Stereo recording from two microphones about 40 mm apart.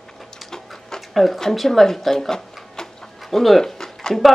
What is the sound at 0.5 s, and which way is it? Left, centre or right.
Printer, centre.